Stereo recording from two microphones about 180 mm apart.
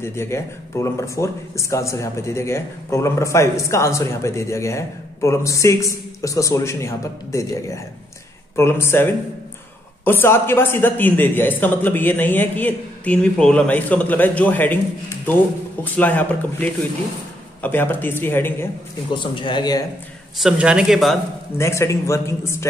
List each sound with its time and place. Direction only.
0.0 s speech: 15° left (ahead or behind)
15.8 s speech: 10° left (ahead or behind)
19.1 s speech: 25° left (ahead or behind)
20.3 s speech: 5° right (ahead or behind)
21.5 s speech: 15° left (ahead or behind)